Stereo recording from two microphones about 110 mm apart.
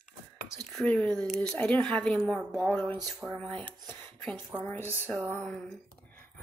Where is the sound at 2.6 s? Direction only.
15° left (ahead or behind).